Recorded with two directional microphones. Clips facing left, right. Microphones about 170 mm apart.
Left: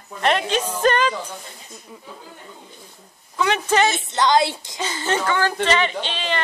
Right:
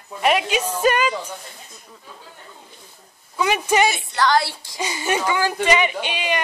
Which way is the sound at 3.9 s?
20° left (ahead or behind).